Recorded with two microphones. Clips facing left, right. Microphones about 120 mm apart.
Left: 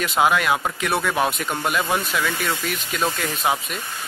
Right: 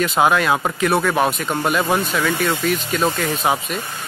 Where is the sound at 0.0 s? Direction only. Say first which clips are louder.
Right 3 dB; centre (ahead or behind).